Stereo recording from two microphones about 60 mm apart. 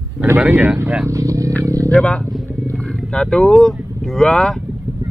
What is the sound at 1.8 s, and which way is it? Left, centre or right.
Speech, centre.